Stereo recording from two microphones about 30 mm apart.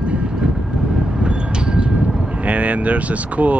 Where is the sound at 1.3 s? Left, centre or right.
Right.